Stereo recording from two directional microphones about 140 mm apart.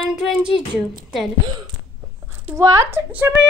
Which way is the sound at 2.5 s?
20° right (ahead or behind).